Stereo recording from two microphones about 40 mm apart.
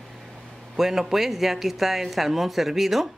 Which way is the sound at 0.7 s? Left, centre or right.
Centre.